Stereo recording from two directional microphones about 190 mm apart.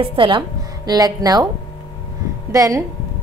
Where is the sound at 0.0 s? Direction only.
25° right (ahead or behind).